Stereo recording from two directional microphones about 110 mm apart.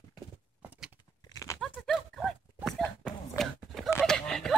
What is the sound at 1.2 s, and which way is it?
Horse, 35° left (ahead or behind).